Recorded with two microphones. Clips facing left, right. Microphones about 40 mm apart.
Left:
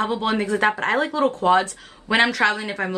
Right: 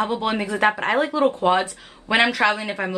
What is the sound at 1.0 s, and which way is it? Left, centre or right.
A woman's voice, right.